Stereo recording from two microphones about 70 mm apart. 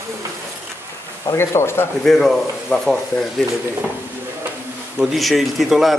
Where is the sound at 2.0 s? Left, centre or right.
Centre.